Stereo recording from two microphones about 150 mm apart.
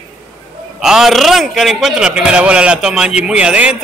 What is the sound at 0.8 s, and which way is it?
A man's voice, centre (ahead or behind).